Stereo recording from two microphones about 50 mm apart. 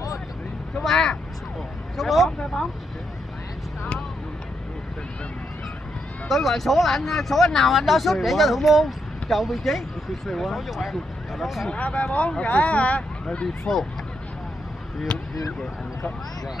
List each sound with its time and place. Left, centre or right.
0.8 s speech: centre
2.3 s speech: centre
6.2 s speech: centre
11.7 s speech: left